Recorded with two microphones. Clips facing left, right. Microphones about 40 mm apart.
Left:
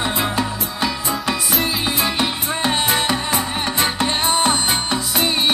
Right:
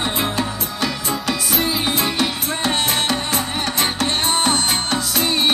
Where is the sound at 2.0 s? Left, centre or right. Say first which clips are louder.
Even; left.